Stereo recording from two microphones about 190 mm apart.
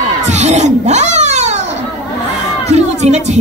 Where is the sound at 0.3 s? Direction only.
35° right (ahead or behind).